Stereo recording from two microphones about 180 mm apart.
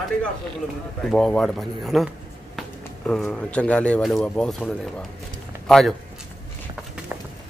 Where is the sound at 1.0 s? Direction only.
Centre (ahead or behind).